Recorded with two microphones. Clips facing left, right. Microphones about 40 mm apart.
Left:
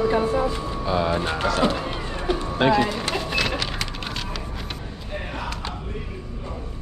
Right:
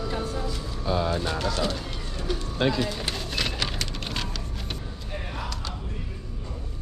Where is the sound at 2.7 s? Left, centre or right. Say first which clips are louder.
Left 8 dB; centre.